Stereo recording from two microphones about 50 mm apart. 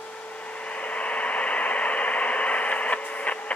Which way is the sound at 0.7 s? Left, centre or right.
Left.